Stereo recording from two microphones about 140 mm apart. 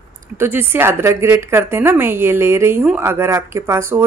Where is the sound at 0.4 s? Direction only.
15° right (ahead or behind).